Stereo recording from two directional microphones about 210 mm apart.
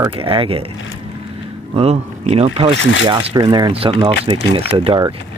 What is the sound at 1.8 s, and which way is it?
Speech, 30° right (ahead or behind).